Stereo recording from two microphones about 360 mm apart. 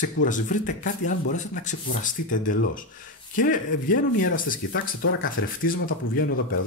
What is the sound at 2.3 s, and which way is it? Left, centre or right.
Speech, left.